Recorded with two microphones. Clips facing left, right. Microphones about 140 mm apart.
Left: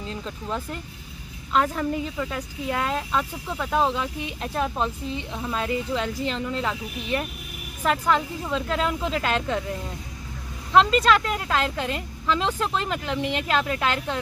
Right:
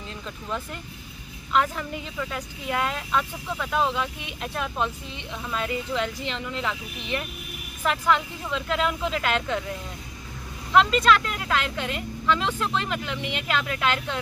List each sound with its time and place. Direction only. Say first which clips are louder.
0.1 s speech: left 1 dB; 35° left (ahead or behind)
10.7 s speech: left 1 dB; 35° left (ahead or behind)